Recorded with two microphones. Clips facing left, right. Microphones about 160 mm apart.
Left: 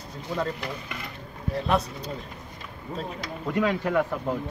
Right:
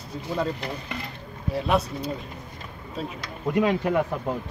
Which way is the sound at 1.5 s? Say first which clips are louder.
Right 2 dB; 5° right (ahead or behind).